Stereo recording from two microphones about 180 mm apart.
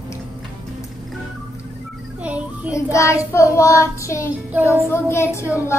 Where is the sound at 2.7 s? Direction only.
15° left (ahead or behind).